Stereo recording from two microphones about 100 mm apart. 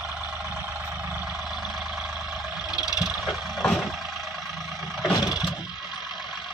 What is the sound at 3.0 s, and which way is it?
Vehicle, centre (ahead or behind).